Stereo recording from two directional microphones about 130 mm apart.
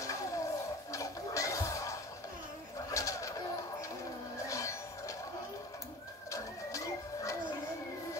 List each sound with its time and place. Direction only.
0.0 s a sound: 25° left (ahead or behind)
0.9 s music: 25° left (ahead or behind)
2.9 s bird: 25° left (ahead or behind)
4.5 s music: 25° left (ahead or behind)
6.3 s printer: 25° left (ahead or behind)